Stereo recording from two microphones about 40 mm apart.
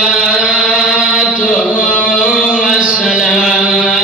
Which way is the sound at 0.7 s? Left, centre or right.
Centre.